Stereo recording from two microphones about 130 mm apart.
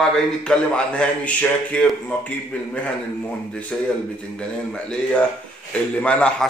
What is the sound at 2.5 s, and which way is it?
Speech, 10° left (ahead or behind).